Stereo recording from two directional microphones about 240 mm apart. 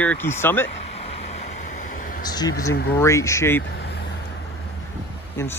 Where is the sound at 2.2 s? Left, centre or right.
Centre.